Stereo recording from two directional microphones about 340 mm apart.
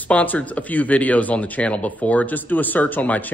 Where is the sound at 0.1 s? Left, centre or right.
Centre.